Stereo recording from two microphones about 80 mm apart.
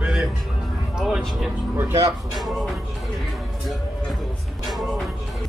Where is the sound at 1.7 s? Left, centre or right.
Right.